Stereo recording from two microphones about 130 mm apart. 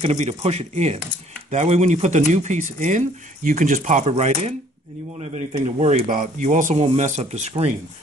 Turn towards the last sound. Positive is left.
turn(degrees=-55)  # may be behind; listen again after turning